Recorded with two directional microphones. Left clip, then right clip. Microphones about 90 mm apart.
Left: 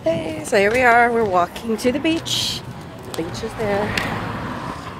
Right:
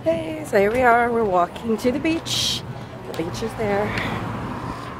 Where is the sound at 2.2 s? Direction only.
35° right (ahead or behind).